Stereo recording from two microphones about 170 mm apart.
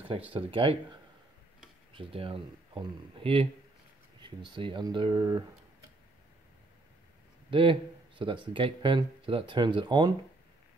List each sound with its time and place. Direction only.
0.3 s speech: 30° right (ahead or behind)
2.0 s speech: 35° right (ahead or behind)
7.5 s speech: 30° right (ahead or behind)